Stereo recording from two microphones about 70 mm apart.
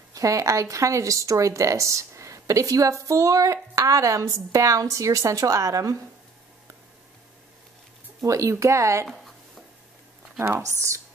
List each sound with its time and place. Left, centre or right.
0.1 s speech: right
8.2 s speech: right